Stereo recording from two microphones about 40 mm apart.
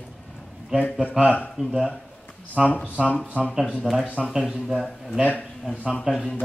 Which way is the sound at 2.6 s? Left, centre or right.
Centre.